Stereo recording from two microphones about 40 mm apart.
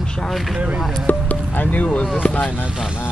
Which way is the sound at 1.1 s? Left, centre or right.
Left.